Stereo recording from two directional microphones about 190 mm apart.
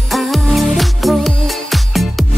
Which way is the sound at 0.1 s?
Centre (ahead or behind).